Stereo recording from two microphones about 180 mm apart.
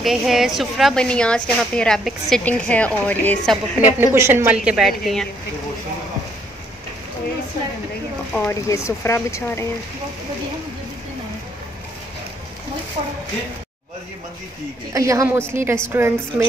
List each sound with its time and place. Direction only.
0.0 s a woman's voice: centre (ahead or behind)
3.8 s a woman's voice: 15° right (ahead or behind)
8.3 s speech: 10° left (ahead or behind)
14.9 s a woman's voice: 15° right (ahead or behind)